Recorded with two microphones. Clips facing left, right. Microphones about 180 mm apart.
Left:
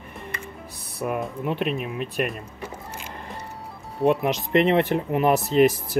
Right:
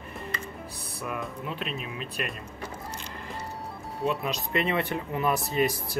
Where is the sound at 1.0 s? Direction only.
50° left (ahead or behind).